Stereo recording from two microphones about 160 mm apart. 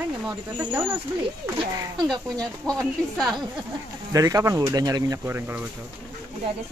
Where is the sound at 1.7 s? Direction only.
25° right (ahead or behind).